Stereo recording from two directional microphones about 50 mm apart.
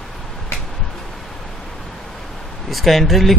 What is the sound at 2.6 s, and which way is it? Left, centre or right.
Speech, centre.